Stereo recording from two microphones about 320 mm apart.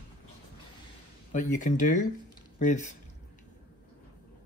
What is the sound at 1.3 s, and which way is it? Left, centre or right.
Speech, left.